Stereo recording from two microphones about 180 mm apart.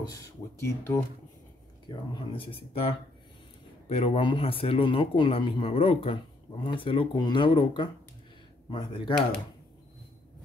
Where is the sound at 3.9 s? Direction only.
30° left (ahead or behind).